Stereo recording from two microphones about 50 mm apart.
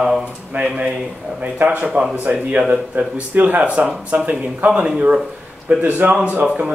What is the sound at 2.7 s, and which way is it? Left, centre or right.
Speech, right.